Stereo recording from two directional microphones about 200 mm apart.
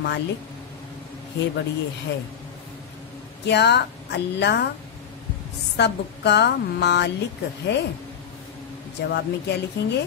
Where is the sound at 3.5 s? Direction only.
60° left (ahead or behind).